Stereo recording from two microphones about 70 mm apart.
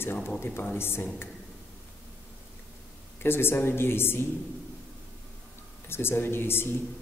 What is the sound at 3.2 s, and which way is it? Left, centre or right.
A man's voice, left.